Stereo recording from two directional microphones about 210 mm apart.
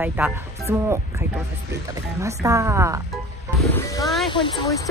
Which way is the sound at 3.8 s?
15° left (ahead or behind).